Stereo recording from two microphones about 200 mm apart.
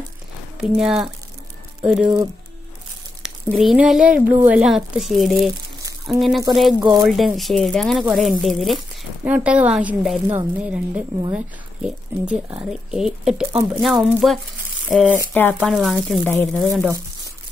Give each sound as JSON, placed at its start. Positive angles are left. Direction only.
{"t": 0.6, "sound": "speech", "side_deg": 0}
{"t": 3.2, "sound": "speech", "side_deg": -5}
{"t": 6.8, "sound": "speech", "side_deg": -20}
{"t": 7.1, "sound": "speech", "side_deg": 0}
{"t": 15.7, "sound": "speech", "side_deg": 0}
{"t": 16.3, "sound": "speech", "side_deg": 10}